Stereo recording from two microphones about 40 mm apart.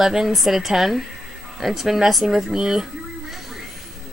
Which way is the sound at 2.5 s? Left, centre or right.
Centre.